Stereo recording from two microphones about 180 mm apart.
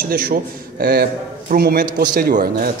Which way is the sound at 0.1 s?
55° right (ahead or behind).